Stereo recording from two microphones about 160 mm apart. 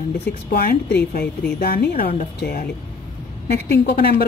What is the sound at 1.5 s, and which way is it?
Speech, 70° left (ahead or behind).